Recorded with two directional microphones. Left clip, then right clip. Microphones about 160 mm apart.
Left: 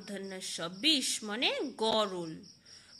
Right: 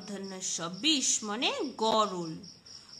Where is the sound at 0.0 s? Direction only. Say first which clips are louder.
Right 2 dB; 15° left (ahead or behind).